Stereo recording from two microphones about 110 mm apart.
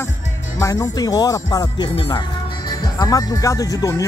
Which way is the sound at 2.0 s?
45° left (ahead or behind).